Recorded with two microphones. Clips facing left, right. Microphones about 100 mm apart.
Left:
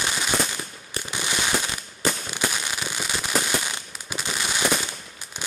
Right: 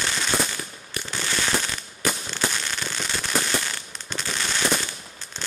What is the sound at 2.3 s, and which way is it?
Fireworks, 10° left (ahead or behind).